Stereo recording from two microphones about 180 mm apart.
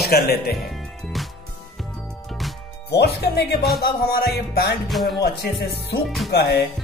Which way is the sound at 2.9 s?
65° left (ahead or behind).